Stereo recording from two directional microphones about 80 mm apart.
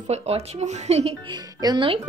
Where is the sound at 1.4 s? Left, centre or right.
Right.